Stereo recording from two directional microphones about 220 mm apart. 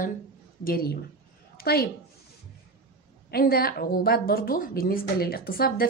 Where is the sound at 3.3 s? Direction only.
45° left (ahead or behind).